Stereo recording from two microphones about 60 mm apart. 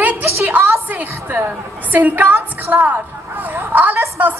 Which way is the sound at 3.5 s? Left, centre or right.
Right.